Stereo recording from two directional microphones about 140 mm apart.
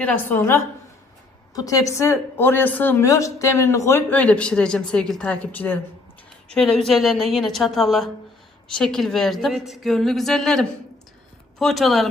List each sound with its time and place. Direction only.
0.0 s a woman's voice: 15° left (ahead or behind)